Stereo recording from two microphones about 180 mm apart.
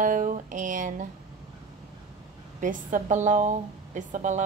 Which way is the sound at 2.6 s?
45° right (ahead or behind).